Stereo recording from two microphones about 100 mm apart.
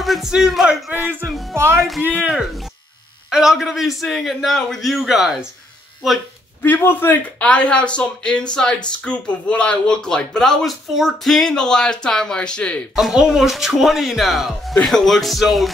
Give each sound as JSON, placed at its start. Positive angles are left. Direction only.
{"t": 0.0, "sound": "a man's voice", "side_deg": 0}
{"t": 1.5, "sound": "speech", "side_deg": -25}
{"t": 1.8, "sound": "a man's voice", "side_deg": 0}
{"t": 3.3, "sound": "a man's voice", "side_deg": -5}
{"t": 6.6, "sound": "speech", "side_deg": 20}
{"t": 12.9, "sound": "a man's voice", "side_deg": -5}